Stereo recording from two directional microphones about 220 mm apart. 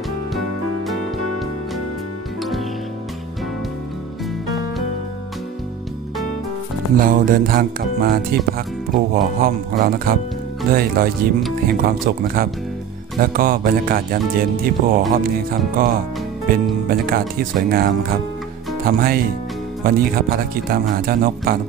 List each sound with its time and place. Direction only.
7.0 s speech: 40° right (ahead or behind)